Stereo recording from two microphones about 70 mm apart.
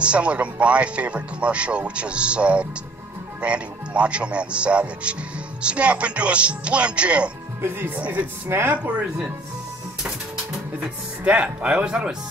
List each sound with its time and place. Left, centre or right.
0.0 s speech: centre
7.6 s speech: right
8.5 s speech: right
8.7 s speech: centre
11.2 s speech: centre